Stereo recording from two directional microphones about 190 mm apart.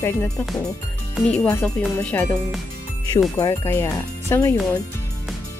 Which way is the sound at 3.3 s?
15° left (ahead or behind).